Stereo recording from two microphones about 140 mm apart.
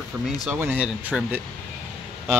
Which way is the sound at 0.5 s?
10° right (ahead or behind).